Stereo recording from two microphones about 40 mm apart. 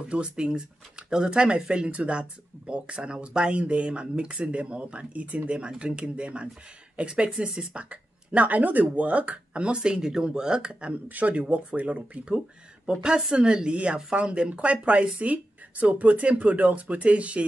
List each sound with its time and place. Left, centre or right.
0.0 s speech: right
11.1 s speech: right